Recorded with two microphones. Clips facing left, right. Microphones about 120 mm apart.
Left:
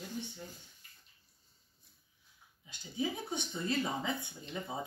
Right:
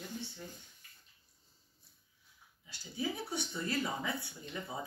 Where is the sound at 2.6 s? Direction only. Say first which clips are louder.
Left 2 dB; 20° left (ahead or behind).